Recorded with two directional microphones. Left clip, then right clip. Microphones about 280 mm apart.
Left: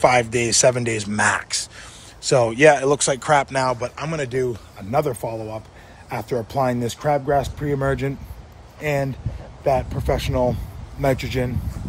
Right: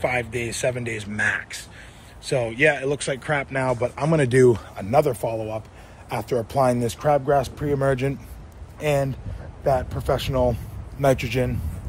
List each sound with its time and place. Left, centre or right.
0.0 s speech: left
2.5 s speech: left
2.8 s speech: left
3.3 s speech: centre
3.8 s a man's voice: centre
4.7 s speech: centre